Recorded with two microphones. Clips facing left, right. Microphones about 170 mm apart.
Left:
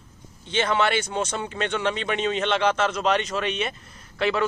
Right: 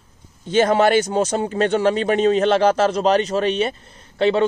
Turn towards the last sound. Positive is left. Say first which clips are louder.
# right 7 dB
turn(degrees=-30)  # may be behind; listen again after turning